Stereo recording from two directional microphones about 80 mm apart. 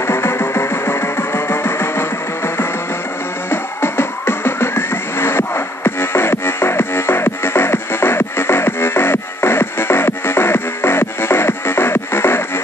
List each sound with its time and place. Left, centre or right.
0.0 s music: left